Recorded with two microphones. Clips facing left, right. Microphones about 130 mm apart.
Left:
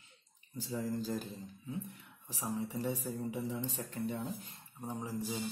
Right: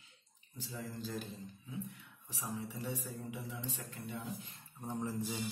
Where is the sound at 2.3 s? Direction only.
35° left (ahead or behind).